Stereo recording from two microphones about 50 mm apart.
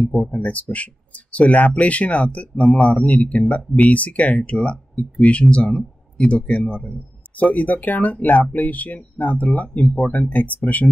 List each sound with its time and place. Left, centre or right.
0.0 s speech: centre
0.4 s speech: left